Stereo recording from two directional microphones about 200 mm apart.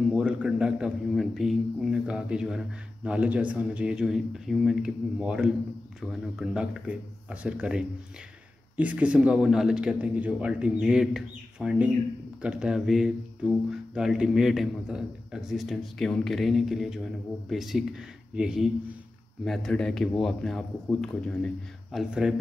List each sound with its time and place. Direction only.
0.1 s a man's voice: 5° right (ahead or behind)